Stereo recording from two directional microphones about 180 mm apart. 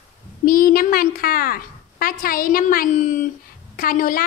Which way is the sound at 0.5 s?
55° left (ahead or behind).